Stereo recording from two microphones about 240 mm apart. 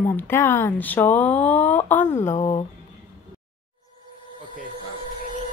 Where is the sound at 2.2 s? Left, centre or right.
Left.